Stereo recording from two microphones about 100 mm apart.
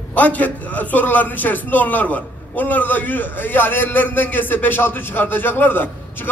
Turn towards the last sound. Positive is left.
turn(degrees=20)  # may be behind; listen again after turning